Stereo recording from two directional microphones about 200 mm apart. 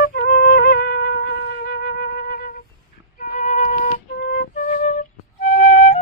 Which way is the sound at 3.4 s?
40° left (ahead or behind).